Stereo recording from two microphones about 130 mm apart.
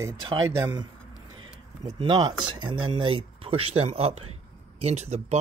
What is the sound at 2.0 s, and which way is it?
Speech, 40° right (ahead or behind).